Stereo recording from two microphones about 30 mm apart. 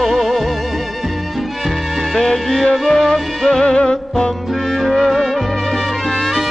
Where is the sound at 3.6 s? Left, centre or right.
Left.